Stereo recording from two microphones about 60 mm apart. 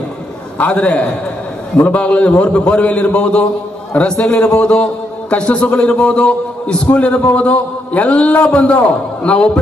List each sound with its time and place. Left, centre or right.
0.6 s a man's voice: left